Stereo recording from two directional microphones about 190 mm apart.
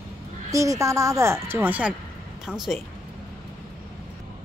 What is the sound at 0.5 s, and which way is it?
Speech, 15° right (ahead or behind).